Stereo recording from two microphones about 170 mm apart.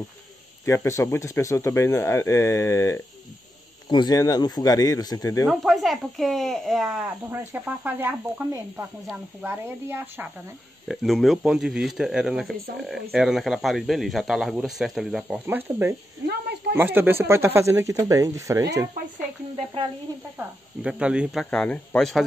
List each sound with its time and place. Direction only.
0.7 s speech: 15° left (ahead or behind)
5.5 s speech: centre (ahead or behind)
10.9 s speech: centre (ahead or behind)
16.3 s snake: 75° right (ahead or behind)
16.7 s speech: 10° right (ahead or behind)
19.5 s speech: 35° right (ahead or behind)
20.3 s speech: 5° right (ahead or behind)